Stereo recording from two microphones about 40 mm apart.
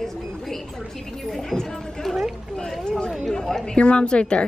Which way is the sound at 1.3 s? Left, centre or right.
Centre.